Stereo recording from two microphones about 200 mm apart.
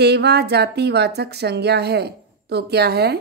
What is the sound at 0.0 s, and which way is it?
A woman's voice, 55° right (ahead or behind).